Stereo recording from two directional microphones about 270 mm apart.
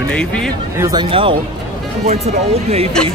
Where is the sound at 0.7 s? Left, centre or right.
Centre.